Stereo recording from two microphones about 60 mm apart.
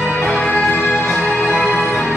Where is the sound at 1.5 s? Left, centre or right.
Right.